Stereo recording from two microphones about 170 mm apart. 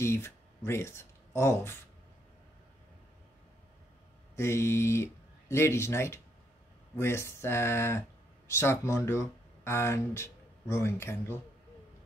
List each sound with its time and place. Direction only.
0.0 s speech: 15° left (ahead or behind)
4.4 s speech: 15° left (ahead or behind)